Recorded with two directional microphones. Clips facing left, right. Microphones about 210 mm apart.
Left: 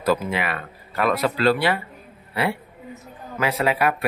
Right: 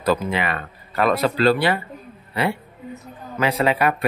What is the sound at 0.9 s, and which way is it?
Speech, 30° right (ahead or behind).